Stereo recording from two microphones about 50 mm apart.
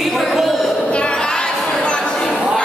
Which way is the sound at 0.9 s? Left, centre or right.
Left.